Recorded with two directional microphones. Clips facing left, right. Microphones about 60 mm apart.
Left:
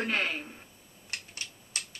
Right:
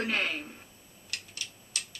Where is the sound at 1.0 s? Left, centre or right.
Left.